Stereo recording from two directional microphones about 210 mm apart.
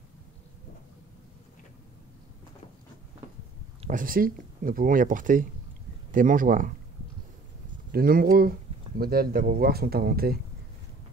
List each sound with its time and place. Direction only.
3.8 s speech: 40° right (ahead or behind)
7.9 s speech: 45° right (ahead or behind)